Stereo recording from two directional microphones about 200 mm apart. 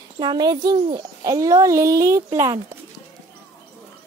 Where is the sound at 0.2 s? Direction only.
20° right (ahead or behind).